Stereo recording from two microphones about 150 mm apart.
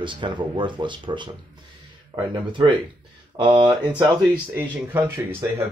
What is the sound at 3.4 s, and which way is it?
Speech, 35° right (ahead or behind).